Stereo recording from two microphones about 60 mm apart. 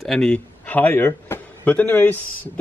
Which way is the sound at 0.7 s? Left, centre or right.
Left.